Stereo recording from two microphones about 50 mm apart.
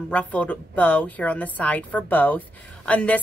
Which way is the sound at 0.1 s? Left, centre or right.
Left.